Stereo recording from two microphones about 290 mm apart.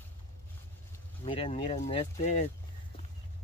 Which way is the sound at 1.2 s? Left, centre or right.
Centre.